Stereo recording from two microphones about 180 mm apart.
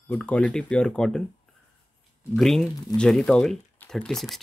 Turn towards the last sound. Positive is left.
turn(degrees=0)  # may be behind; listen again after turning